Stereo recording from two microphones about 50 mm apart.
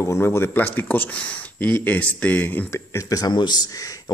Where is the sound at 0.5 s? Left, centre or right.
Left.